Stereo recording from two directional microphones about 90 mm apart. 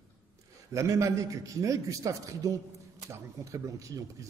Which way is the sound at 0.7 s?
35° right (ahead or behind).